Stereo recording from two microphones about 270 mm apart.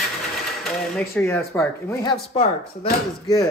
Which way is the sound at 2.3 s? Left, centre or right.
Left.